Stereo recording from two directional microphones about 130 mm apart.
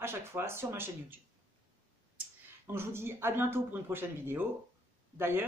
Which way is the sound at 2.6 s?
20° right (ahead or behind).